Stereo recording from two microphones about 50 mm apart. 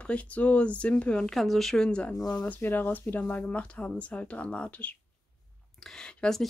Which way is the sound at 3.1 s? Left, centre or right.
Left.